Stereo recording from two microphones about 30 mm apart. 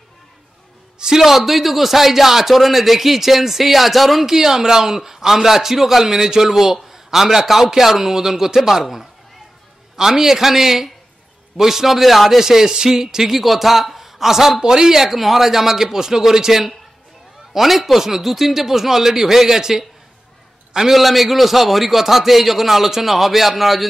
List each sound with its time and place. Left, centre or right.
0.9 s a man's voice: right
1.2 s a man's voice: centre
4.3 s a man's voice: centre
15.0 s a man's voice: centre
20.9 s a man's voice: centre